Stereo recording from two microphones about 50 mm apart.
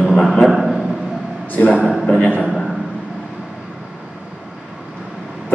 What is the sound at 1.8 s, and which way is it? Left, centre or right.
Speech, right.